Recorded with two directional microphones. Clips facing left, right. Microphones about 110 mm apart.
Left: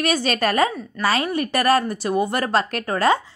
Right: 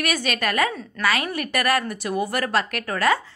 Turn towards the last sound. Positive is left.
turn(degrees=30)  # may be behind; listen again after turning